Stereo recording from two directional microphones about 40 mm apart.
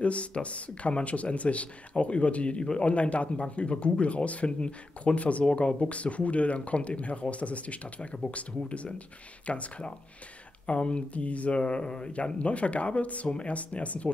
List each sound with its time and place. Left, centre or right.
0.0 s speech: left